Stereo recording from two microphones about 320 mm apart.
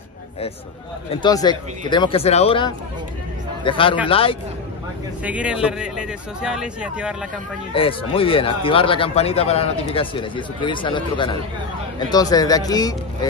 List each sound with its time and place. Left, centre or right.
1.1 s speech: centre
5.2 s speech: centre
7.7 s speech: centre